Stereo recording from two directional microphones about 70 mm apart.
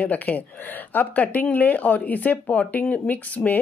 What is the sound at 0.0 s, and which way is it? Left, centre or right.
Speech, left.